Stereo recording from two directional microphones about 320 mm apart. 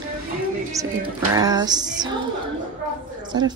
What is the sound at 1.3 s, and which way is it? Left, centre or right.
Speech, centre.